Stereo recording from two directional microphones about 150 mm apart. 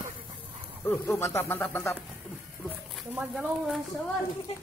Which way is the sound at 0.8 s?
15° left (ahead or behind).